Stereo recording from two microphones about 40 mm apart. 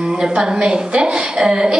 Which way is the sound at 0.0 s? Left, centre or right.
Centre.